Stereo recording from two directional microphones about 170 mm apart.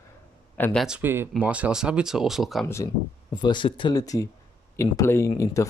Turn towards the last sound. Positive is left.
turn(degrees=20)  # may be behind; listen again after turning